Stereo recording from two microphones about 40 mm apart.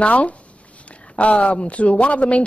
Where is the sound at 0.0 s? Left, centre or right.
Left.